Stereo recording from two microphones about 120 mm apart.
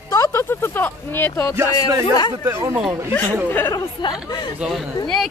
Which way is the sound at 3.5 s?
15° left (ahead or behind).